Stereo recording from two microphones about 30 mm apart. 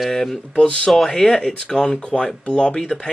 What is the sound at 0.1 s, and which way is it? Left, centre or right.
Speech, centre.